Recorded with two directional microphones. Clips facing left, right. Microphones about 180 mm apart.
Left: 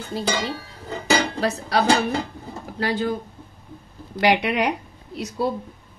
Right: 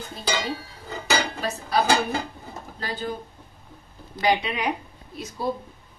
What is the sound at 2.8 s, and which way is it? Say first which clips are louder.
Speech: left 8 dB; 80° left.